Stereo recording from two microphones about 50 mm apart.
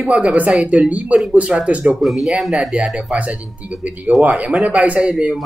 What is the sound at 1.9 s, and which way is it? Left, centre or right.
Speech, centre.